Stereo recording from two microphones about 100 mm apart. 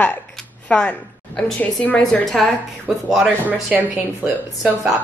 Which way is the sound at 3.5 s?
15° right (ahead or behind).